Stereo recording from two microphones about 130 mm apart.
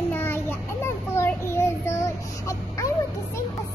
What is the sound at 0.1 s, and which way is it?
Child singing, 15° left (ahead or behind).